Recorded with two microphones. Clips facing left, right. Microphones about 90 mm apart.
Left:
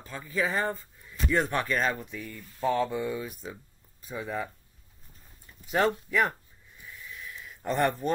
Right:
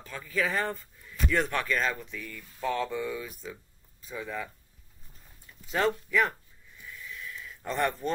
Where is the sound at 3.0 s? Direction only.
25° left (ahead or behind).